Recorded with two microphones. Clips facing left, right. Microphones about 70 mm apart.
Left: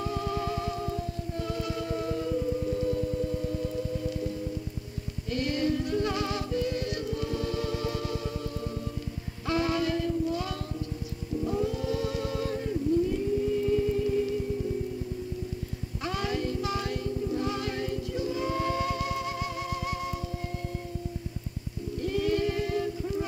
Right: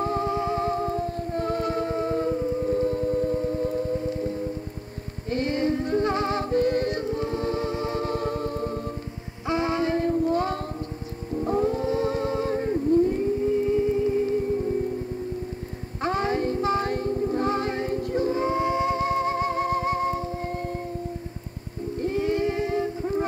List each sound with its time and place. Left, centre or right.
0.0 s music: right
9.5 s music: right
11.3 s humming: right
16.0 s music: right
22.0 s a sound: right